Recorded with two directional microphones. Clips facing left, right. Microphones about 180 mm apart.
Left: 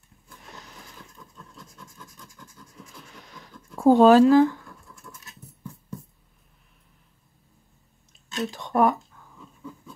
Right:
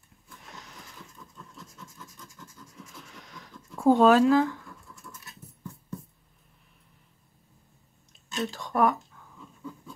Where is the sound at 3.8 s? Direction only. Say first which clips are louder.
Left 4 dB; 30° left (ahead or behind).